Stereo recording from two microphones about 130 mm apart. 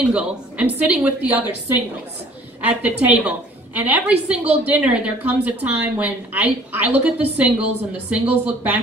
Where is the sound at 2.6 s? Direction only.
10° right (ahead or behind).